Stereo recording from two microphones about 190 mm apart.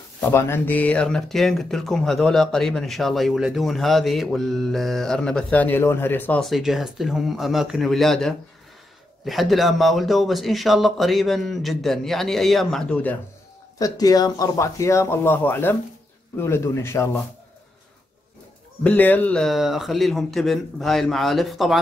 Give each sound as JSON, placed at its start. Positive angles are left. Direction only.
{"t": 0.3, "sound": "speech", "side_deg": 10}
{"t": 13.7, "sound": "speech", "side_deg": 20}
{"t": 18.9, "sound": "speech", "side_deg": 10}